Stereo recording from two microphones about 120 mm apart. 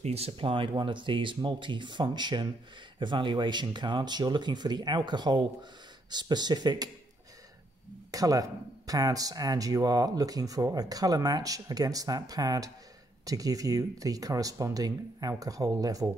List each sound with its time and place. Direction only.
0.0 s speech: 60° right (ahead or behind); by 6.9 s 35° right (ahead or behind)
8.1 s speech: 30° right (ahead or behind)